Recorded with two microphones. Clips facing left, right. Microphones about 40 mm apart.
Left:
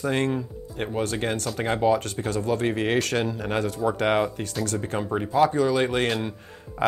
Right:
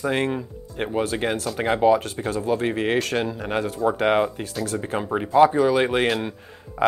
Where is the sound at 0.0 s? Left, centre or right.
Centre.